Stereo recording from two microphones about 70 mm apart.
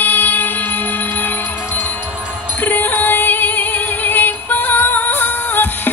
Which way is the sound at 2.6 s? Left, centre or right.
Left.